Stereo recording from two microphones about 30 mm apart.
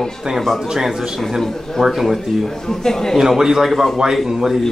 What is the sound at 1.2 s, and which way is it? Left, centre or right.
A man's voice, centre.